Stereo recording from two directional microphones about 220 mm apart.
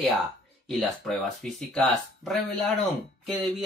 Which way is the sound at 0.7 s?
Centre (ahead or behind).